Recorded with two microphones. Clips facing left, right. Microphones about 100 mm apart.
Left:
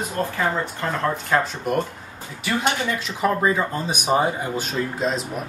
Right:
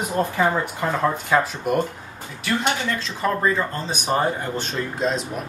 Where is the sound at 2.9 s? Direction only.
10° left (ahead or behind).